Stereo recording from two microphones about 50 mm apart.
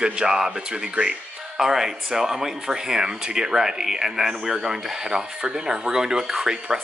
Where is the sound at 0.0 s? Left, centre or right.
Centre.